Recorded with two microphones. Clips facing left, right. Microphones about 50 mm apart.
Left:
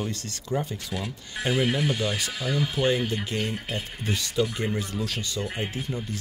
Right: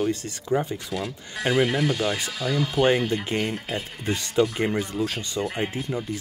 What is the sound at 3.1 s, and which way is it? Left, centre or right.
Speech, right.